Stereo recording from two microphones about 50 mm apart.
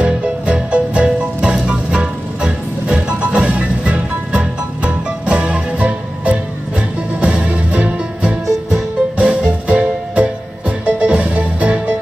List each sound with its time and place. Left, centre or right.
0.0 s music: right